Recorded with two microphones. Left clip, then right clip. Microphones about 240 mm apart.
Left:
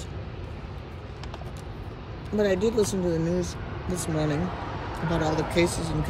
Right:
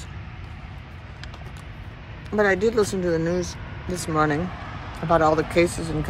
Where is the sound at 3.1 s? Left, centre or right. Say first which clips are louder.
Right 4 dB; centre.